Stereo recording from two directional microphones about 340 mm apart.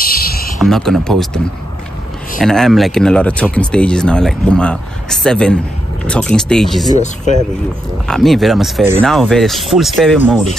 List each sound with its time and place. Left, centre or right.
0.0 s a sound: left
0.6 s speech: centre
2.4 s speech: centre
6.9 s speech: left
8.1 s speech: centre